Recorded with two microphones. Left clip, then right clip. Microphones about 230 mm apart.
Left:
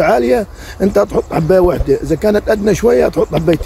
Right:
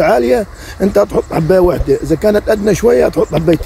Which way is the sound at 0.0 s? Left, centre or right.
Centre.